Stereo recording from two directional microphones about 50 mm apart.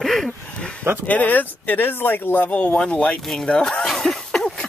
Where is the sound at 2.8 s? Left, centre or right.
Left.